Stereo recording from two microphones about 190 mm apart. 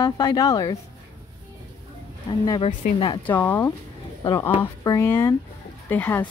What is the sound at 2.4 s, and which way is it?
Speech, 20° left (ahead or behind).